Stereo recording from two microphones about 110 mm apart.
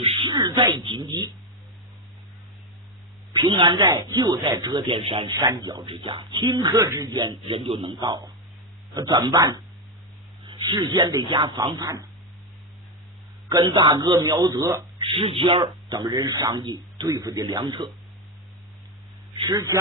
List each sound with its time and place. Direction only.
0.0 s a sound: 50° right (ahead or behind)
3.3 s speech: 45° right (ahead or behind)
3.9 s a man's voice: 35° right (ahead or behind)
4.9 s speech: 55° right (ahead or behind)
6.7 s speech: 25° right (ahead or behind)
7.2 s speech: 50° right (ahead or behind)
8.0 s a man's voice: 40° right (ahead or behind)
10.4 s a man's voice: 50° right (ahead or behind)
13.5 s a man's voice: 40° right (ahead or behind)
15.0 s a man's voice: 50° right (ahead or behind)
19.4 s speech: 35° right (ahead or behind)